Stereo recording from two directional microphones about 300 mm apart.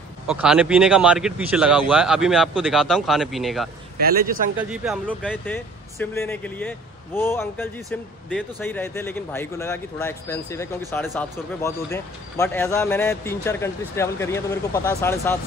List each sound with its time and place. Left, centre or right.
0.3 s speech: centre
4.0 s speech: right
4.6 s speech: centre